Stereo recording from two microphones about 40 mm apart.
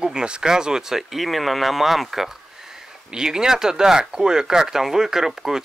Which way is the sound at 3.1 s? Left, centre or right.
Centre.